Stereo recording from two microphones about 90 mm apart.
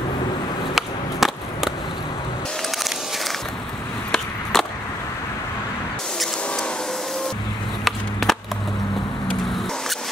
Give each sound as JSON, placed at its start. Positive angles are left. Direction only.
{"t": 0.7, "sound": "a sound", "side_deg": 0}
{"t": 4.1, "sound": "skateboard", "side_deg": 5}
{"t": 6.1, "sound": "music", "side_deg": 10}
{"t": 7.8, "sound": "skateboard", "side_deg": 5}